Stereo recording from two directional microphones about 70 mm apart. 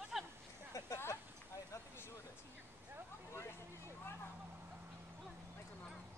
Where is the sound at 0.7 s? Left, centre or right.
Left.